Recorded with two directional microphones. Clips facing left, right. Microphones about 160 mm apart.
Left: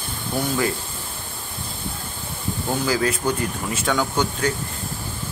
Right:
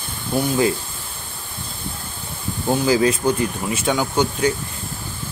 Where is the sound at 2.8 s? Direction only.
20° right (ahead or behind).